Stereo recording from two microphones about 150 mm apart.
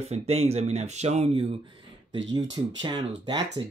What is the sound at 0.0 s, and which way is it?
Speech, 45° right (ahead or behind).